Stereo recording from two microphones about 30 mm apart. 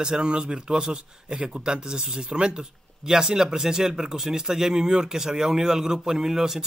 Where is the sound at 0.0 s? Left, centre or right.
Right.